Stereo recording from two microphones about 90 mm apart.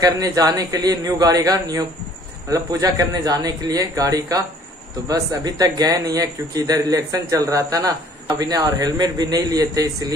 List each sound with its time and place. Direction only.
0.0 s a man's voice: 45° right (ahead or behind)